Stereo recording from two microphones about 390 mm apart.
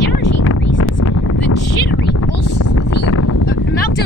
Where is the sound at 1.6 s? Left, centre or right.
Left.